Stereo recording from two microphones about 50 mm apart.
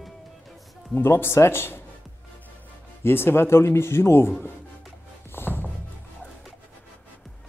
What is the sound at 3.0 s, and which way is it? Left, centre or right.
Speech, left.